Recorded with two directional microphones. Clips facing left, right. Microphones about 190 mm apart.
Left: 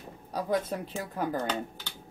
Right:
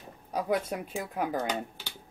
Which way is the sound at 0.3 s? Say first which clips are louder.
Even; 10° right (ahead or behind).